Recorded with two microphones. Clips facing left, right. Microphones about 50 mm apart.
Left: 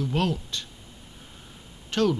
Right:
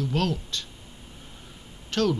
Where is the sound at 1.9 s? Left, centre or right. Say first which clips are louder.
Left 1 dB; centre.